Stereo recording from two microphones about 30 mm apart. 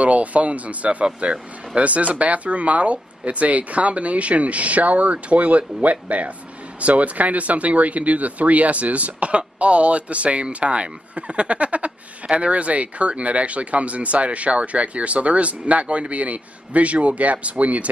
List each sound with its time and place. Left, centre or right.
0.0 s speech: right